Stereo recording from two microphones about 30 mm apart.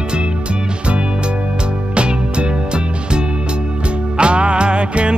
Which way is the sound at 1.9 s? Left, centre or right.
Right.